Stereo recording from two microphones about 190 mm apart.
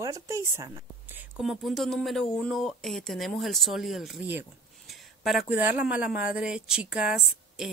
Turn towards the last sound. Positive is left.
turn(degrees=0)  # may be behind; listen again after turning